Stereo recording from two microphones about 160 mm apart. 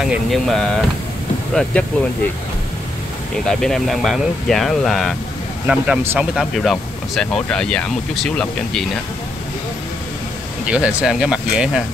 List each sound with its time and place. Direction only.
0.0 s speech: centre (ahead or behind)
3.4 s speech: 5° left (ahead or behind)
10.7 s speech: 5° right (ahead or behind)